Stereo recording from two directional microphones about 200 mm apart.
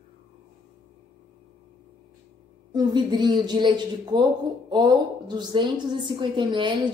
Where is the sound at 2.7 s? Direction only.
20° right (ahead or behind).